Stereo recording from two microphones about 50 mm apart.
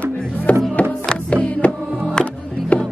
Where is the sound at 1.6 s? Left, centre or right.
Left.